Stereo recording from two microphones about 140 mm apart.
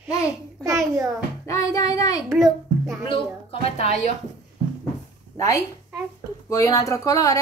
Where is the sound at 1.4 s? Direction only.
25° left (ahead or behind).